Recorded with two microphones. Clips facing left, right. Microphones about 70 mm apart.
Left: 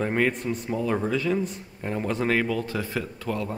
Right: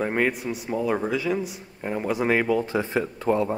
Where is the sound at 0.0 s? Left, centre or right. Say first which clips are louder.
Even; centre.